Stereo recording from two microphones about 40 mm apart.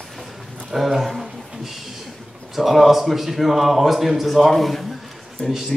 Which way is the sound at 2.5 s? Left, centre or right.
Centre.